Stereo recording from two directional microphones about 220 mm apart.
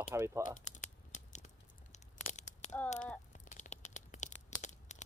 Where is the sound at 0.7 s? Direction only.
35° left (ahead or behind).